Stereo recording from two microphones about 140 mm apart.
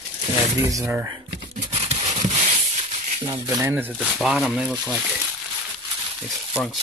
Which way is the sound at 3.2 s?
25° right (ahead or behind).